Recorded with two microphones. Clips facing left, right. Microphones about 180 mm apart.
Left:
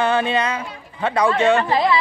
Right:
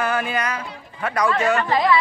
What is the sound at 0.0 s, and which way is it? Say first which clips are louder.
Speech: left 4 dB; 25° left (ahead or behind).